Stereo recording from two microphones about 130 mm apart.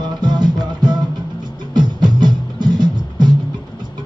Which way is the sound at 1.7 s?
35° right (ahead or behind).